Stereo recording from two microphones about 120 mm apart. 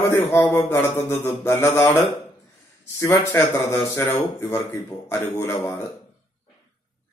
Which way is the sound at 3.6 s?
25° left (ahead or behind).